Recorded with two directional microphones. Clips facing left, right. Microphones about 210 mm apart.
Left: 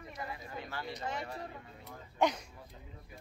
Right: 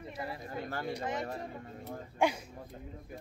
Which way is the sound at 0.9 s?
20° right (ahead or behind).